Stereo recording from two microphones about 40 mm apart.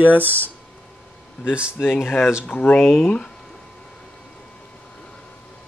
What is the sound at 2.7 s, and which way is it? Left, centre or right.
Speech, centre.